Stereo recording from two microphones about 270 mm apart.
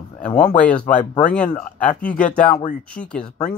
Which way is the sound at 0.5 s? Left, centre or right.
Centre.